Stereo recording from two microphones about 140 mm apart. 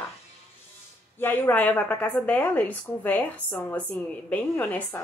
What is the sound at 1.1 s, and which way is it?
A woman's voice, 15° left (ahead or behind).